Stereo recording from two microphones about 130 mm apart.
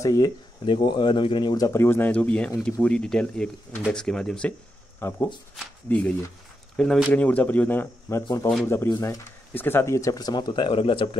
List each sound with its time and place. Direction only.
0.0 s speech: 30° left (ahead or behind); by 4.6 s 5° left (ahead or behind)
5.0 s speech: 20° left (ahead or behind)
8.6 s speech: 25° left (ahead or behind)
9.5 s speech: 15° left (ahead or behind); by 11.1 s 45° left (ahead or behind)